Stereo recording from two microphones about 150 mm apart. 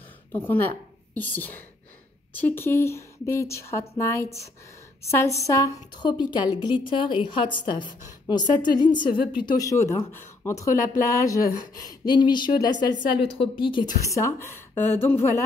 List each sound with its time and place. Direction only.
0.3 s a woman's voice: 15° left (ahead or behind)
5.4 s a woman's voice: 20° left (ahead or behind)